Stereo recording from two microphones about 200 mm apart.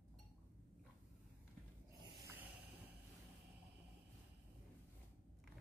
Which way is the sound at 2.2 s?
10° right (ahead or behind).